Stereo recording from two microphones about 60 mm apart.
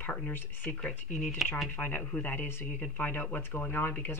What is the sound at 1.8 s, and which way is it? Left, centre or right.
Speech, left.